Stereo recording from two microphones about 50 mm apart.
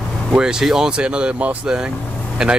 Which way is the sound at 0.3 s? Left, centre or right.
Centre.